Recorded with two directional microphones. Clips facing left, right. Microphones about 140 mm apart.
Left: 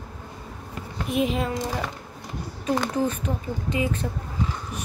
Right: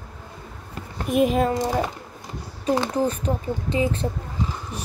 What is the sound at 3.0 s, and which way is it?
Speech, 35° right (ahead or behind).